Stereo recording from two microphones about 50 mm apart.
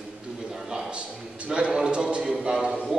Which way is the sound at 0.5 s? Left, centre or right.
Centre.